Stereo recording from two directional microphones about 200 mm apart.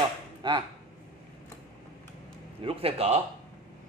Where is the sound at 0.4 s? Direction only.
25° right (ahead or behind).